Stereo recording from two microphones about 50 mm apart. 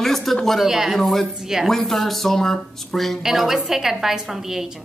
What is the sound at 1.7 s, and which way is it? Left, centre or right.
Speech, centre.